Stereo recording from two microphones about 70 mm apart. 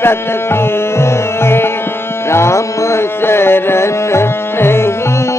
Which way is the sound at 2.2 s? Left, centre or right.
Left.